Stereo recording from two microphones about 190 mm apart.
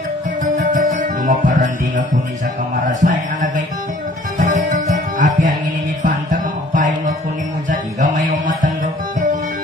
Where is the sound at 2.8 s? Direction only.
45° right (ahead or behind).